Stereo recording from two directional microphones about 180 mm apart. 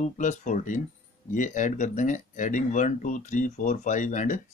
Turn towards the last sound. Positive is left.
turn(degrees=45)  # may be behind; listen again after turning